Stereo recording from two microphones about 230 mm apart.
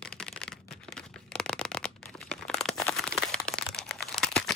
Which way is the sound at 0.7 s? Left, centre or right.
Centre.